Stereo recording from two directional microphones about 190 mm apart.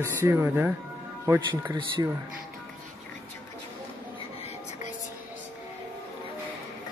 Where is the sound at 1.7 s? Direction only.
25° right (ahead or behind).